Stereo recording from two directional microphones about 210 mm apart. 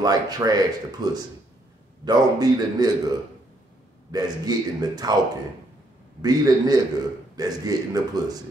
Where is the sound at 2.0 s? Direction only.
20° right (ahead or behind).